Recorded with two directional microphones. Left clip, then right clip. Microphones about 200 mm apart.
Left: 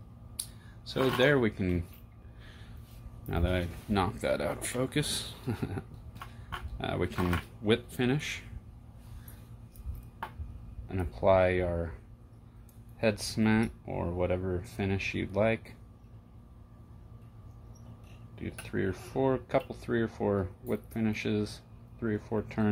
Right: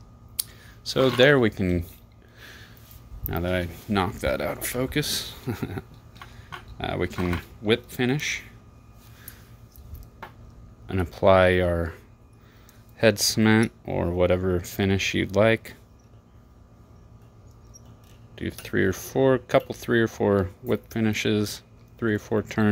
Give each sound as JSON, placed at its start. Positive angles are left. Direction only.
{"t": 0.4, "sound": "speech", "side_deg": -45}
{"t": 3.3, "sound": "speech", "side_deg": -25}
{"t": 10.9, "sound": "speech", "side_deg": -50}
{"t": 18.3, "sound": "speech", "side_deg": -50}